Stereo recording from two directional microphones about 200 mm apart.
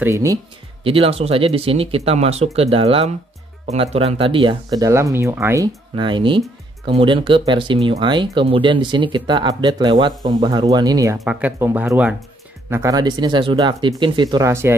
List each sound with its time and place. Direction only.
0.0 s speech: 15° right (ahead or behind)
0.8 s speech: 30° right (ahead or behind); by 5.7 s 10° right (ahead or behind)
5.9 s speech: 25° right (ahead or behind)
11.1 s speech: 10° right (ahead or behind)